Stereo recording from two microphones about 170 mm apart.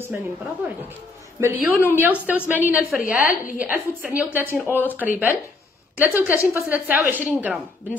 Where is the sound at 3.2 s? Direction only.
55° left (ahead or behind).